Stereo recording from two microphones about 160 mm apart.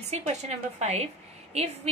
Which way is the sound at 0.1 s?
45° right (ahead or behind).